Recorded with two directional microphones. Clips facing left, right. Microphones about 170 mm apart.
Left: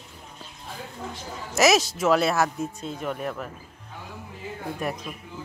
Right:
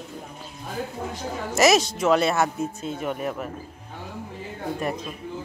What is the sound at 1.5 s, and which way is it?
Speech, centre (ahead or behind).